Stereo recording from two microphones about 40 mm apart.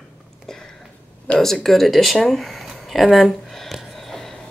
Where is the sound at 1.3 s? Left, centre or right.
Left.